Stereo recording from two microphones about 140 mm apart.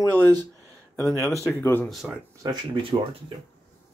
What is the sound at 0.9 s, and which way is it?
Speech, 20° left (ahead or behind).